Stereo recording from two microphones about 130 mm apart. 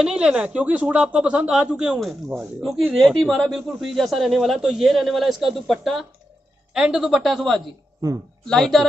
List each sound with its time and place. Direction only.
0.0 s speech: 5° right (ahead or behind)